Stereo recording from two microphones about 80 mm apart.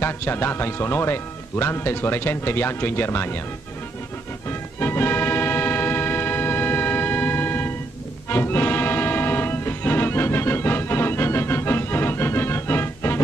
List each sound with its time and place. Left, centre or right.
0.0 s speech: left
4.5 s music: left